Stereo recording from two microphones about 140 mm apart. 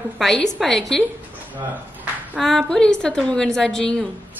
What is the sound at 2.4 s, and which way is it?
A woman's voice, centre (ahead or behind).